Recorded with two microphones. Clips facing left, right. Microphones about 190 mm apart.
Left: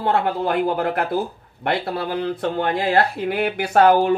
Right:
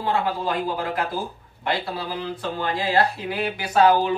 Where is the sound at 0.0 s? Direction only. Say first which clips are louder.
Left 4 dB; 65° left (ahead or behind).